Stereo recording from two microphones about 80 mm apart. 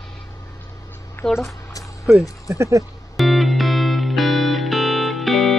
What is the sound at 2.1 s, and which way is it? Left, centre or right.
Speech, centre.